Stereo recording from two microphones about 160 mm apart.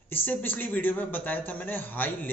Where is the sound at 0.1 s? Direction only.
10° left (ahead or behind).